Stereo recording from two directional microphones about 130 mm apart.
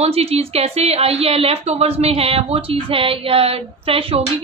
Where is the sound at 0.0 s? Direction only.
50° right (ahead or behind).